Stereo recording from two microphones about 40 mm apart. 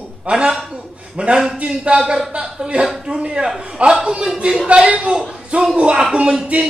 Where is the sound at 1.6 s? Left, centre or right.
Right.